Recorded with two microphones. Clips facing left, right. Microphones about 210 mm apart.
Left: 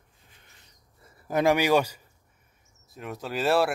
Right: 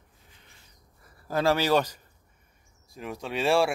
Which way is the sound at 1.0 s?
20° left (ahead or behind).